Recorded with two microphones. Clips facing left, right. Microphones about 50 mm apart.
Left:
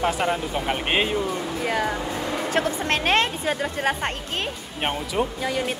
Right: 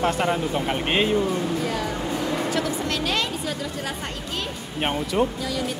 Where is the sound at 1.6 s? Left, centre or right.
Left.